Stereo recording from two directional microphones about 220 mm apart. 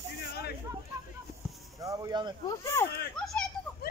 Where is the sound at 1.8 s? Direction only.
15° right (ahead or behind).